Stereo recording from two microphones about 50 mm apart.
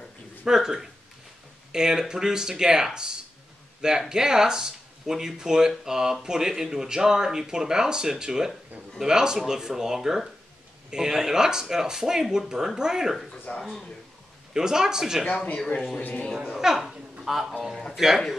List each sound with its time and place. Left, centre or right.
0.5 s speech: centre
14.5 s speech: centre
15.2 s speech: left
16.5 s speech: centre